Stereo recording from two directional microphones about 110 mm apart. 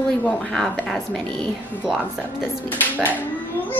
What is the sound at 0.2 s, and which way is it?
A woman's voice, 10° left (ahead or behind).